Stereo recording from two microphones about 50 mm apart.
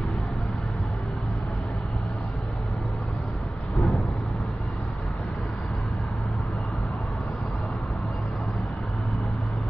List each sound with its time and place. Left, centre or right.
3.7 s vehicle: centre